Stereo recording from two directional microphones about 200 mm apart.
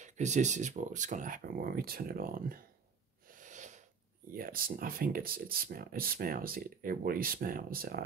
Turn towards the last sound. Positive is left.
turn(degrees=-45)  # may be behind; listen again after turning